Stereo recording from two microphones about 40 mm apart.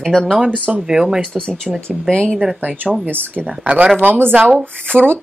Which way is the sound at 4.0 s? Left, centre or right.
Right.